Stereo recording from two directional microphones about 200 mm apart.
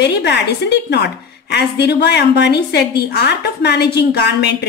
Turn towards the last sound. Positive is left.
turn(degrees=55)  # may be behind; listen again after turning